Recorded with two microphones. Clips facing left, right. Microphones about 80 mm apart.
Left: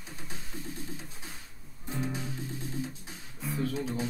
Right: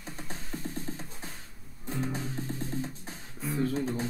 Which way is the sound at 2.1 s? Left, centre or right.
Right.